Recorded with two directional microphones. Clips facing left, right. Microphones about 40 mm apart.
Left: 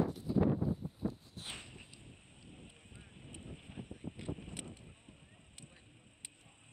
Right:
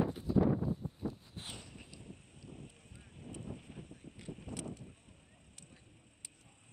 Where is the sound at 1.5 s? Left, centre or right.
Left.